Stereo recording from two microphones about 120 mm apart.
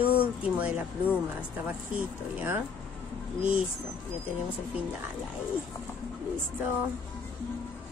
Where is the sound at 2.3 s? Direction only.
15° right (ahead or behind).